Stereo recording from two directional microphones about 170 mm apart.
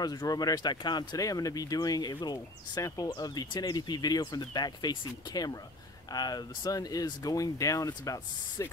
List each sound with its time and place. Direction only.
0.0 s speech: 20° left (ahead or behind)